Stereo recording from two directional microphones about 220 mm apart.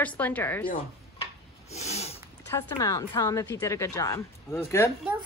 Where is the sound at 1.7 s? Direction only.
30° left (ahead or behind).